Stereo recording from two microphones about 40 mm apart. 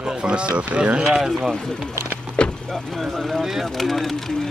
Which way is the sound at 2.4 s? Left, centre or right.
Left.